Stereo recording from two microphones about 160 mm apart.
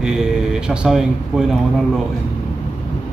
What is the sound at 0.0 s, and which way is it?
Speech, 5° right (ahead or behind).